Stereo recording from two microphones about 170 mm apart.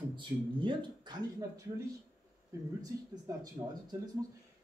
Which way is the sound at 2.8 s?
25° right (ahead or behind).